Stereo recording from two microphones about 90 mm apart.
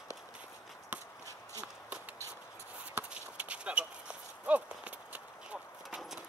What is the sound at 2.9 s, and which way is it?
Clip-clop, 15° right (ahead or behind).